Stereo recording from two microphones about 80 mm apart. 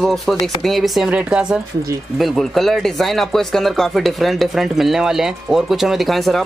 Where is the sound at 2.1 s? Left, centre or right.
Centre.